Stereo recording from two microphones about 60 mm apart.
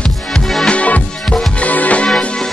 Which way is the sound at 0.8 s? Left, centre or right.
Left.